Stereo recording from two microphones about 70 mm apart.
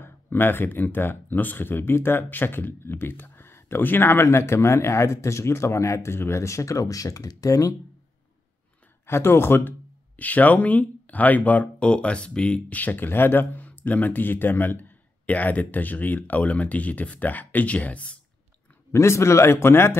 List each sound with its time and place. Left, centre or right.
0.0 s speech: left
9.0 s speech: left; by 18.1 s centre
18.9 s speech: left